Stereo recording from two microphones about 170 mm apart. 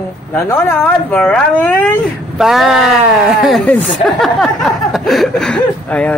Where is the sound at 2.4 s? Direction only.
Centre (ahead or behind).